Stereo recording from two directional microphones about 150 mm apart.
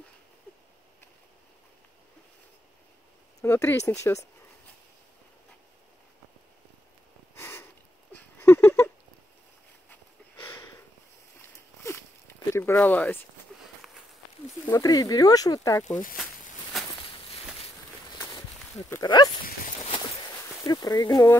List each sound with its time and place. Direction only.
3.3 s speech: 15° left (ahead or behind)
7.3 s sniff: 20° left (ahead or behind)
8.1 s a sound: 15° left (ahead or behind)
11.8 s a sound: 15° left (ahead or behind)
14.7 s speech: 25° left (ahead or behind)
16.7 s a sound: centre (ahead or behind)
18.8 s speech: 15° left (ahead or behind)
19.0 s speech: 30° left (ahead or behind)
20.6 s speech: 30° left (ahead or behind)